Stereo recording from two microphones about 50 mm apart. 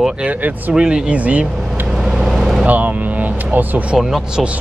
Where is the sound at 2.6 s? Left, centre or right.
Right.